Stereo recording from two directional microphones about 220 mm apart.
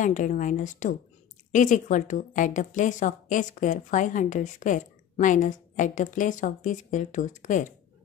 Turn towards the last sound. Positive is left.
turn(degrees=35)  # may be behind; listen again after turning